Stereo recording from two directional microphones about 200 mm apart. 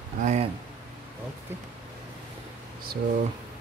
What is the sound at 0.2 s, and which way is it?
Speech, 35° right (ahead or behind).